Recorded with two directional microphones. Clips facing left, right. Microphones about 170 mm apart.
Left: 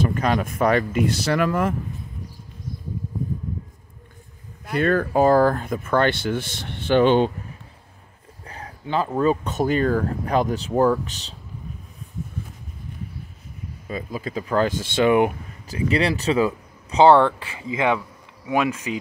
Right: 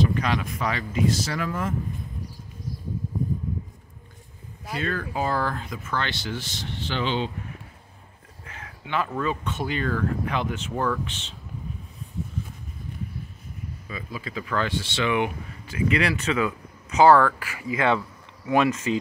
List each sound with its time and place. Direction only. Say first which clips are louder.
0.0 s speech: left 3 dB; 45° left (ahead or behind); by 1.8 s 65° left (ahead or behind)
4.7 s speech: left 9 dB; 50° left (ahead or behind)
8.5 s speech: left 5 dB; 35° left (ahead or behind)
13.8 s speech: left 7 dB; 45° left (ahead or behind); by 17.9 s 20° left (ahead or behind)
17.9 s speech: right 1 dB; 10° left (ahead or behind)